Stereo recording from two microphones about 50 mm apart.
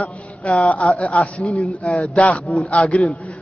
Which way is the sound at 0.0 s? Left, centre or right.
Left.